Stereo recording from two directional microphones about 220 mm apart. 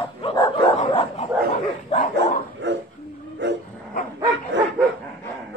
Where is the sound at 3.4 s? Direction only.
55° right (ahead or behind).